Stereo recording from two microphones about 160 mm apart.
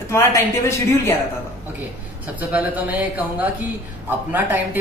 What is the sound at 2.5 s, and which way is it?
Speech, 10° right (ahead or behind).